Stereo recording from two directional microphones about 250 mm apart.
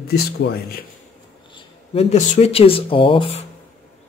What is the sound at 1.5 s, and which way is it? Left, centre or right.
Speech, left.